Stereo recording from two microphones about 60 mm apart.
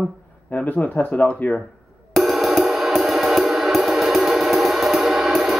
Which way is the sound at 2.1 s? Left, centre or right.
Centre.